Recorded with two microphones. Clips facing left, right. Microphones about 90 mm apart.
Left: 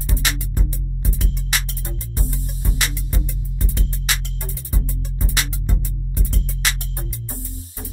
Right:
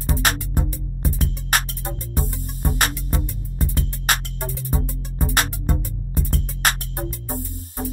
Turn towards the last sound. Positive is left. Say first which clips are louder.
# right 6 dB
turn(degrees=-50)  # may be behind; listen again after turning